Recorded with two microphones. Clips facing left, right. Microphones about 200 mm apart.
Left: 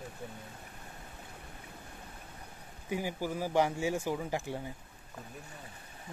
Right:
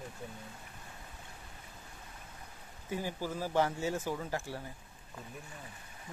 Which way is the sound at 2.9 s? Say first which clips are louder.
Left 2 dB; 15° left (ahead or behind).